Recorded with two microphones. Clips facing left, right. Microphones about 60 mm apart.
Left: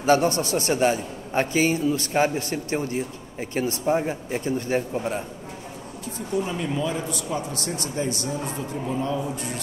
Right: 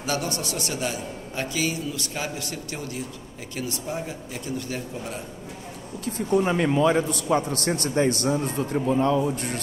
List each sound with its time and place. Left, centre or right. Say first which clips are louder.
0.0 s a man's voice: left 8 dB; left
6.1 s a man's voice: right 5 dB; right